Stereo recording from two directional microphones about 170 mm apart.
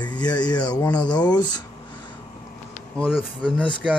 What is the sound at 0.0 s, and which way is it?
Speech, 25° left (ahead or behind).